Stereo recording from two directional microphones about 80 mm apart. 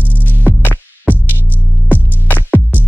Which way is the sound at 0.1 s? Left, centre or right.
Left.